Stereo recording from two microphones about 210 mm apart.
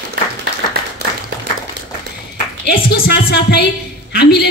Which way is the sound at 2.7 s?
50° left (ahead or behind).